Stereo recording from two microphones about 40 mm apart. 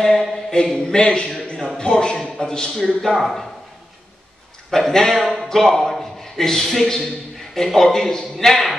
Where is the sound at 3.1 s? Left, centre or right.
Centre.